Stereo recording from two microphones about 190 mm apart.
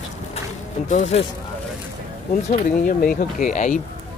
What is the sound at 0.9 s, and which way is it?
Speech, 35° left (ahead or behind).